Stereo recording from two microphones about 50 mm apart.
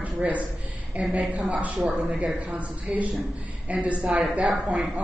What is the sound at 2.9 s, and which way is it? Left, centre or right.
Speech, centre.